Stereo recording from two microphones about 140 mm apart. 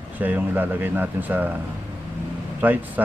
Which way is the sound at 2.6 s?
15° right (ahead or behind).